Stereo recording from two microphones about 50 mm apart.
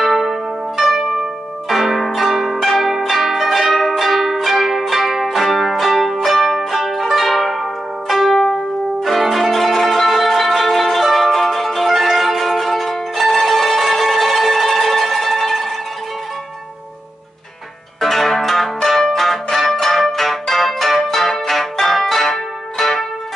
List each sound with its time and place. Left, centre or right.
0.0 s zither: centre
18.0 s music: centre